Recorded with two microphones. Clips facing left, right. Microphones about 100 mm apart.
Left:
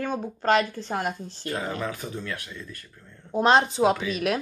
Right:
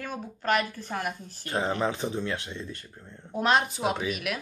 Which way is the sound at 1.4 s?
25° right (ahead or behind).